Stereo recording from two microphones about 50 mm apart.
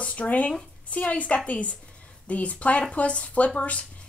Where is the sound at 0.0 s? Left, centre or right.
Left.